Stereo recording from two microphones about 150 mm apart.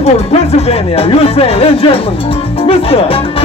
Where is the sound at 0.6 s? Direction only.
40° left (ahead or behind).